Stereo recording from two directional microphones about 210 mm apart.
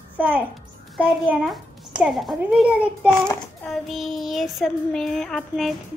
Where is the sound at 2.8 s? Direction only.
10° left (ahead or behind).